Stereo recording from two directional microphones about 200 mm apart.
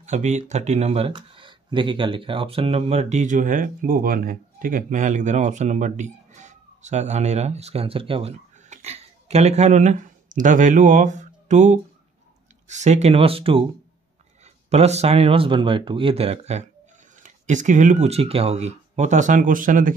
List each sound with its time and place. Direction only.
0.0 s speech: 35° right (ahead or behind)